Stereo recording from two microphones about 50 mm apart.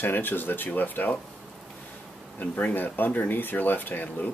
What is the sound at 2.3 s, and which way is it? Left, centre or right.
Speech, left.